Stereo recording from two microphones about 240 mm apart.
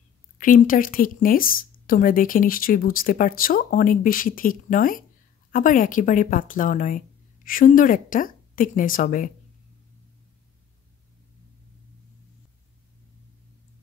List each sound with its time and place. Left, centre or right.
0.4 s speech: left